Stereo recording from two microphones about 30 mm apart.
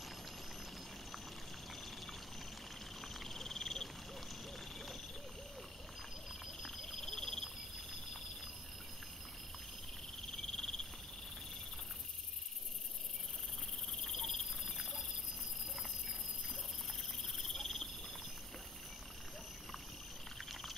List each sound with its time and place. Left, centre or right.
3.0 s frog: centre
6.4 s a sound: centre
6.9 s a sound: centre
10.3 s frog: centre
14.0 s cricket: centre
14.6 s cricket: centre
17.5 s frog: centre